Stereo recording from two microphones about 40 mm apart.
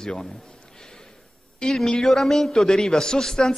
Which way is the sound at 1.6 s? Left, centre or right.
Centre.